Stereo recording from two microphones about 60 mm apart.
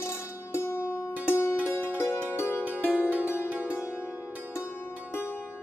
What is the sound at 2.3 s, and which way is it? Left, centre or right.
Music, left.